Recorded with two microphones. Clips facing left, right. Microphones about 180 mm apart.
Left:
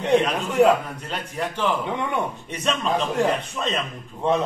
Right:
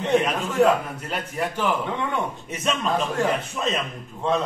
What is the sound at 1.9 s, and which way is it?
Speech, 15° left (ahead or behind).